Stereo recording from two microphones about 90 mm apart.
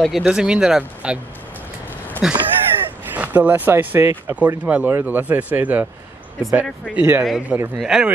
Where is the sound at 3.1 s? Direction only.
20° right (ahead or behind).